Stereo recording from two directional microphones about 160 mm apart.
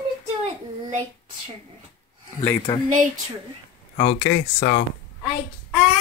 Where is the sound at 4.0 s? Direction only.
60° left (ahead or behind).